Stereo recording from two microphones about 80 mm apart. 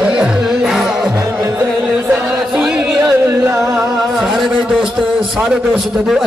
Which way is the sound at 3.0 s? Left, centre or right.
Right.